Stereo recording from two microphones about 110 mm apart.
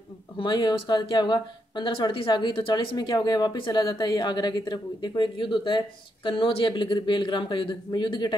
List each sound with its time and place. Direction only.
0.4 s a woman's voice: 45° left (ahead or behind)